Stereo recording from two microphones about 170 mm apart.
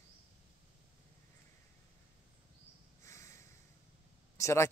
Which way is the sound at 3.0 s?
15° left (ahead or behind).